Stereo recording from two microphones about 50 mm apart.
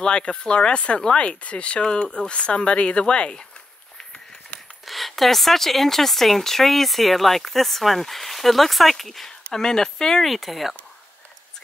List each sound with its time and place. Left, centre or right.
0.0 s speech: centre
4.8 s speech: centre